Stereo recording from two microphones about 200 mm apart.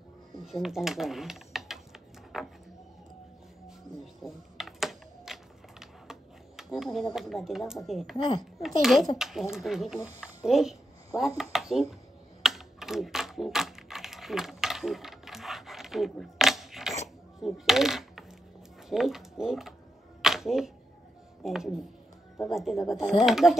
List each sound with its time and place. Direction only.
0.5 s speech: centre (ahead or behind)
2.3 s a sound: centre (ahead or behind)
3.6 s typing: centre (ahead or behind)
9.2 s speech: centre (ahead or behind)
12.4 s typing: centre (ahead or behind)
17.4 s coin: centre (ahead or behind)
18.9 s speech: centre (ahead or behind)
20.2 s a sound: centre (ahead or behind)
21.4 s speech: centre (ahead or behind)